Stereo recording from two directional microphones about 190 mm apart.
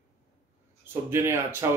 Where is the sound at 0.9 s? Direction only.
15° right (ahead or behind).